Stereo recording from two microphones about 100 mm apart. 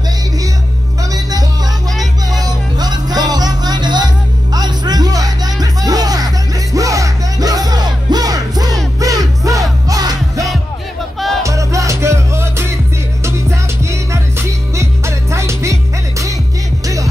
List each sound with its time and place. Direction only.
2.4 s music: 40° right (ahead or behind)
11.1 s music: centre (ahead or behind)
11.4 s music: 30° right (ahead or behind)